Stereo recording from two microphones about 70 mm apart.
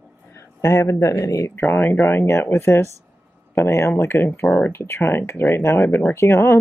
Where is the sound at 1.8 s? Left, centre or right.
Centre.